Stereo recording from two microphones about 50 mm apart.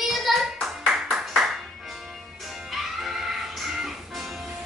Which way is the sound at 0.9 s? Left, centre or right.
Centre.